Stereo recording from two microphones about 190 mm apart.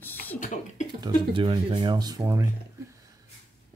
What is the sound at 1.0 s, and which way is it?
Speech, 25° right (ahead or behind).